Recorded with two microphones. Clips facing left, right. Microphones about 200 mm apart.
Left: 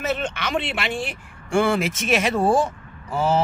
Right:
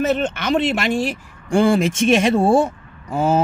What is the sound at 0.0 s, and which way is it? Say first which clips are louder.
Speech: right 6 dB; 40° right (ahead or behind).